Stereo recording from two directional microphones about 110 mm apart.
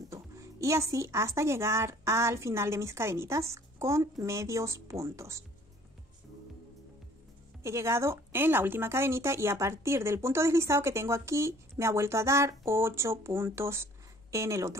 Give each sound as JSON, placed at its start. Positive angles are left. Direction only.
{"t": 0.1, "sound": "speech", "side_deg": -30}
{"t": 7.6, "sound": "speech", "side_deg": -25}